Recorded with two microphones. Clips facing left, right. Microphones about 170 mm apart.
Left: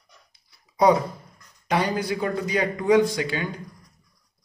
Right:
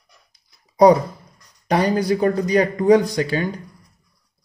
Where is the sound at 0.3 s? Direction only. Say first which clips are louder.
Right 1 dB; 40° right (ahead or behind).